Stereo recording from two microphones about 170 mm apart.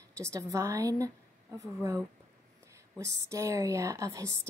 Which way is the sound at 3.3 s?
20° right (ahead or behind).